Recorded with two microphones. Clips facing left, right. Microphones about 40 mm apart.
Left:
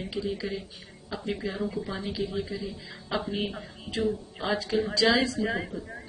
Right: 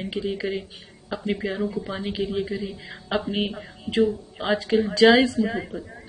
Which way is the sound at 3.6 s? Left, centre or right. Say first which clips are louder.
Right 10 dB; right.